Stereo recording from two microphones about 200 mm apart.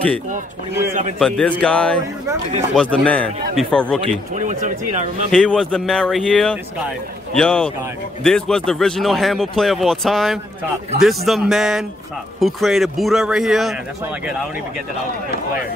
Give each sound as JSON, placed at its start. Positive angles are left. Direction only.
{"t": 1.2, "sound": "speech", "side_deg": 5}
{"t": 4.4, "sound": "speech", "side_deg": -40}
{"t": 5.3, "sound": "speech", "side_deg": 5}